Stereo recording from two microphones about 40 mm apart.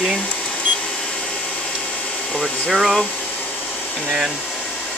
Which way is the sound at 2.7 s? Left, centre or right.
Centre.